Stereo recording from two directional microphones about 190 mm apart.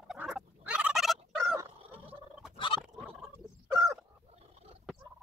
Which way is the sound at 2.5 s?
25° left (ahead or behind).